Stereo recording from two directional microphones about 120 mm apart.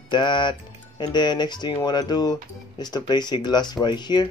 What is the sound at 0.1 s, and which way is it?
Speech, 40° left (ahead or behind).